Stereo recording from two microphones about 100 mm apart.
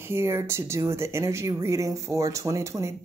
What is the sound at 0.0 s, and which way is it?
Speech, 25° right (ahead or behind).